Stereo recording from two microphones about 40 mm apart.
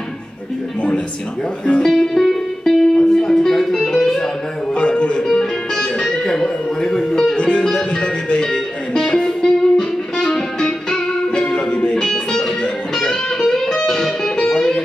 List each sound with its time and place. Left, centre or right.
1.9 s music: centre
4.7 s music: left
5.3 s music: centre